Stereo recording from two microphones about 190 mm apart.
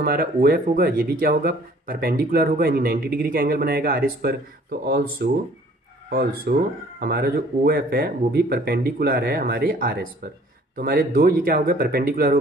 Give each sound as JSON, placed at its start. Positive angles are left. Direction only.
{"t": 0.0, "sound": "speech", "side_deg": -50}
{"t": 6.5, "sound": "speech", "side_deg": -55}